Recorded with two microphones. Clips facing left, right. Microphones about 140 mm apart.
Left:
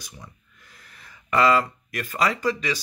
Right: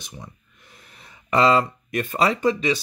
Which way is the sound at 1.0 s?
25° right (ahead or behind).